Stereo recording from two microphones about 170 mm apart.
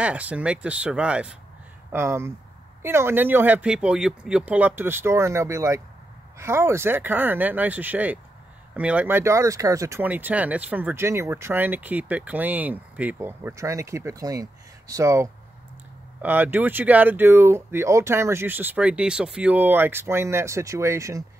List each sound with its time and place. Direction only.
0.0 s speech: 10° right (ahead or behind)